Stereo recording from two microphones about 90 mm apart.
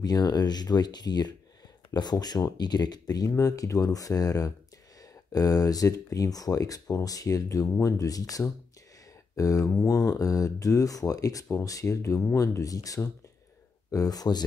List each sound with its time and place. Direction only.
0.0 s speech: 45° left (ahead or behind)